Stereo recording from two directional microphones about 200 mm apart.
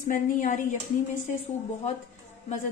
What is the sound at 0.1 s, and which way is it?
Speech, 40° left (ahead or behind).